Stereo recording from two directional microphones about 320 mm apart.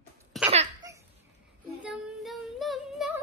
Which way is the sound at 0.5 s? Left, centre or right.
Centre.